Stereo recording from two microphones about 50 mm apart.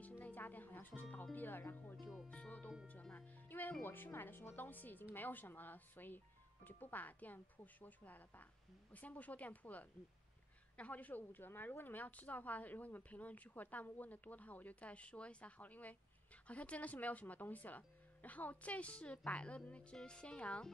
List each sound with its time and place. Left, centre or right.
0.0 s music: left
0.7 s a woman's voice: left
2.2 s a woman's voice: left